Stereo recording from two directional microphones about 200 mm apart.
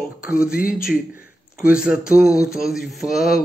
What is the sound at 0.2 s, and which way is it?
Mantra, 5° right (ahead or behind).